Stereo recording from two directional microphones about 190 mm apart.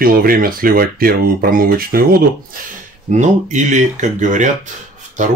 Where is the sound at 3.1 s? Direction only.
40° right (ahead or behind).